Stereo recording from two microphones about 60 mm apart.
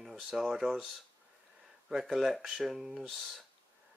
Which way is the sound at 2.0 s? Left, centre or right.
Centre.